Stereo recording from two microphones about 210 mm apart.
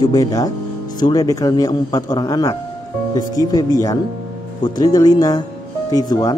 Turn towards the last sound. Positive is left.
turn(degrees=20)  # may be behind; listen again after turning